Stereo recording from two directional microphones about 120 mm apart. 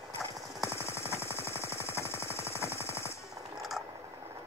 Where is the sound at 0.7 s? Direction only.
20° left (ahead or behind).